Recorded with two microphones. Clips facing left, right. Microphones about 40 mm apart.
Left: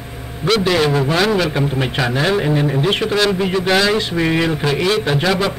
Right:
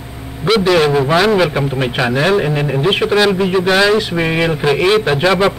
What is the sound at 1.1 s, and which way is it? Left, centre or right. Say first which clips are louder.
A man's voice: right 4 dB; centre.